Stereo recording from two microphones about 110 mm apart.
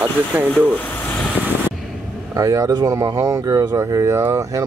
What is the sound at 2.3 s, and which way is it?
Speech, 30° right (ahead or behind).